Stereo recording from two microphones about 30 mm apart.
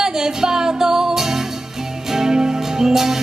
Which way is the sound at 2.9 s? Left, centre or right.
Centre.